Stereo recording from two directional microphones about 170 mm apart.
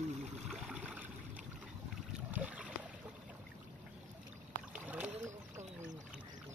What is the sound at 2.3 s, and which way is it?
Boat, 10° right (ahead or behind).